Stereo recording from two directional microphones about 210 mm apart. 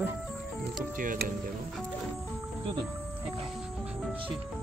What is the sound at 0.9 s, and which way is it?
Speech, 40° right (ahead or behind).